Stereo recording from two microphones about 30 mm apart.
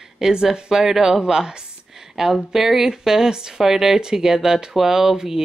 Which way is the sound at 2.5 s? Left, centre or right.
Centre.